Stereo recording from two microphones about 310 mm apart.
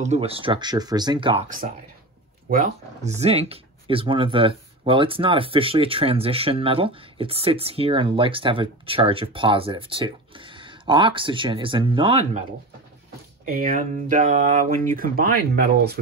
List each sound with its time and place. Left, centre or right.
0.0 s speech: centre
13.5 s speech: right